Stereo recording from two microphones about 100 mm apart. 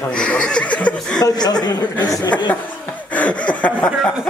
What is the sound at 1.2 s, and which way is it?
A woman's voice, 45° left (ahead or behind).